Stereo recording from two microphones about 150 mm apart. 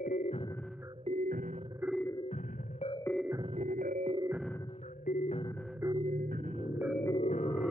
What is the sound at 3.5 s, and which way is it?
Music, 60° right (ahead or behind).